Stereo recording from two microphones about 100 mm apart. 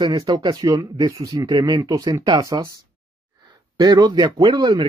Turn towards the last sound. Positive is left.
turn(degrees=-45)  # may be behind; listen again after turning